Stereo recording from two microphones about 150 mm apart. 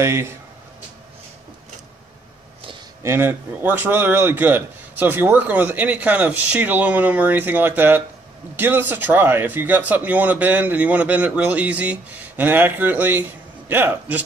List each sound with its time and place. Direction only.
0.0 s a man's voice: 15° right (ahead or behind)
3.0 s a man's voice: 15° right (ahead or behind)